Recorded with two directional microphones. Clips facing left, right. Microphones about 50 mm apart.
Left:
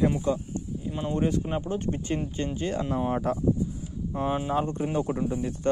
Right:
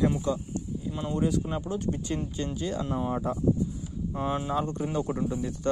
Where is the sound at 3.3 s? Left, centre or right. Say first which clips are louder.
Left 3 dB; left.